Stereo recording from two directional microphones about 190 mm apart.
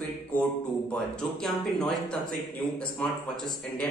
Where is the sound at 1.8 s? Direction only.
5° left (ahead or behind).